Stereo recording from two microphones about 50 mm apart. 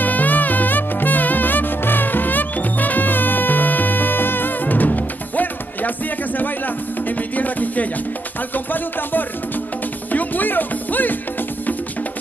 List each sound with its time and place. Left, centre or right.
0.0 s music: left
7.1 s music: left